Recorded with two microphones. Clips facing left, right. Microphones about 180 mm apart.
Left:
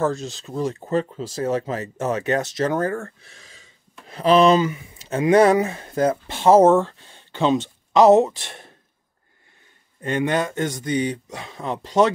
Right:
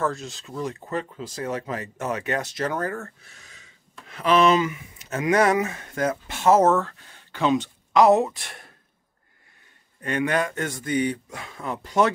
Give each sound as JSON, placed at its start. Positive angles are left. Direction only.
{"t": 0.0, "sound": "speech", "side_deg": 25}
{"t": 10.0, "sound": "speech", "side_deg": 25}